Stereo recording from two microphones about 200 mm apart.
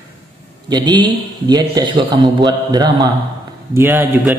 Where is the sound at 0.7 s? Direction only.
20° right (ahead or behind).